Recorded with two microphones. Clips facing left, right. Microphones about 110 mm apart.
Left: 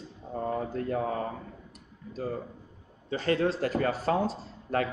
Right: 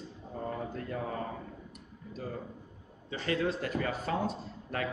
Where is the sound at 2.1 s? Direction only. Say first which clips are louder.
Left 6 dB; 40° left (ahead or behind).